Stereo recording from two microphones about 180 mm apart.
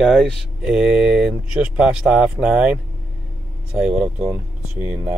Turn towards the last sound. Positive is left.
turn(degrees=-5)  # may be behind; listen again after turning